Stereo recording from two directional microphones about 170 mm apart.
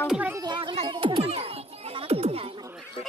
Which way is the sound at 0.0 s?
5° right (ahead or behind).